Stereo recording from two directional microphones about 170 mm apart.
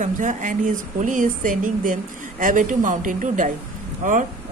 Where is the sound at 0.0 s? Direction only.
45° right (ahead or behind).